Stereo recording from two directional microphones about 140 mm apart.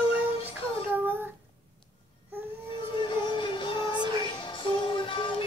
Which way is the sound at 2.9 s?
35° left (ahead or behind).